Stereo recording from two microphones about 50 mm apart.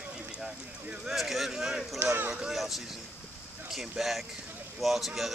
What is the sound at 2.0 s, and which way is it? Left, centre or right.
Speech, right.